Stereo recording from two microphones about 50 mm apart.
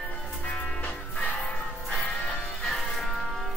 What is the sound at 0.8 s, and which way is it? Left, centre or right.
Music, left.